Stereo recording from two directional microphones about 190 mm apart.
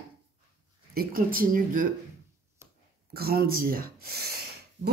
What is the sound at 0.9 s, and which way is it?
Speech, 50° right (ahead or behind).